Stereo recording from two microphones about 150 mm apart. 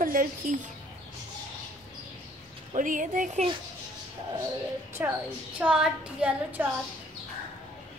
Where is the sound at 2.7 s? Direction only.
60° right (ahead or behind).